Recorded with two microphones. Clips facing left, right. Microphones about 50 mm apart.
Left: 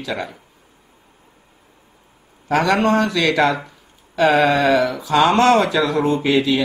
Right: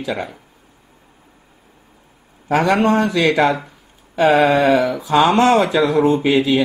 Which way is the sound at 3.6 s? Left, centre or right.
Centre.